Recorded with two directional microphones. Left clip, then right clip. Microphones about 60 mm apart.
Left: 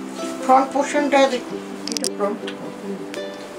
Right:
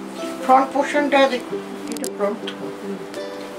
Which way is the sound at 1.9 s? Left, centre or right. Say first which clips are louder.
Left 5 dB; right.